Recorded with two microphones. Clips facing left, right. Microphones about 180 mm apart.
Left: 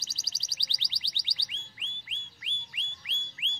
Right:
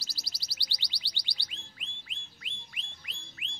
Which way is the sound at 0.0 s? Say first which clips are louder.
Right 1 dB; 25° left (ahead or behind).